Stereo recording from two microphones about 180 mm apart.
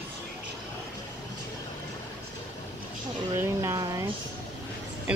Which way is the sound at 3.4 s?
15° right (ahead or behind).